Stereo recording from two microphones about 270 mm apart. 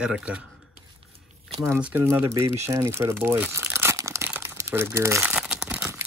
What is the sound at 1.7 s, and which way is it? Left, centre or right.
Speech, centre.